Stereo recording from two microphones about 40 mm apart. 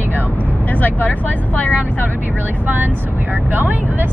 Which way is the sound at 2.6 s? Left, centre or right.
Right.